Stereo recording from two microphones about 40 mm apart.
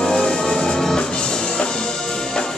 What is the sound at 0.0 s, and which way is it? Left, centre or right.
Music, centre.